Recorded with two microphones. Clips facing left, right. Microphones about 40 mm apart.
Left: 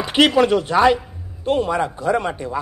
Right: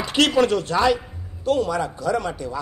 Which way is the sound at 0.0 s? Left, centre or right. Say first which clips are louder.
Left 3 dB; left.